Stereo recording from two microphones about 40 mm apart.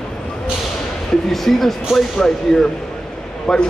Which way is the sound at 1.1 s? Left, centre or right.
Centre.